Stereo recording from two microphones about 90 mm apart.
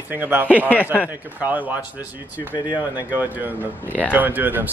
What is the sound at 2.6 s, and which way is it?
Speech, 55° left (ahead or behind).